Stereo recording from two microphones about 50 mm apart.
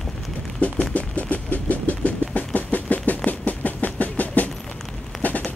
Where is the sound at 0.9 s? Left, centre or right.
Left.